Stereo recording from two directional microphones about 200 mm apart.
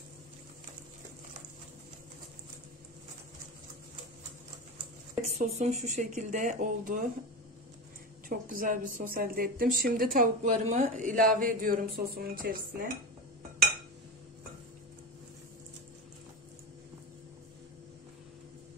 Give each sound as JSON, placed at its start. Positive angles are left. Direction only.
{"t": 5.4, "sound": "speech", "side_deg": -35}
{"t": 8.3, "sound": "a woman's voice", "side_deg": -45}